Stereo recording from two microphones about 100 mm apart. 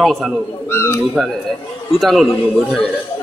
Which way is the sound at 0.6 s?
25° left (ahead or behind).